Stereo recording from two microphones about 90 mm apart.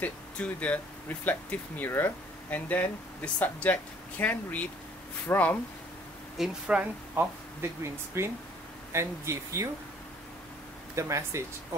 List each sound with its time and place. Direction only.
0.0 s speech: 15° left (ahead or behind)
6.3 s speech: 5° right (ahead or behind)
7.8 s speech: 30° right (ahead or behind)
11.0 s speech: 35° right (ahead or behind)